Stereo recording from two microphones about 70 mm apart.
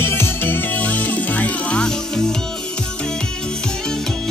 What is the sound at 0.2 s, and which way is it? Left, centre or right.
Music, left.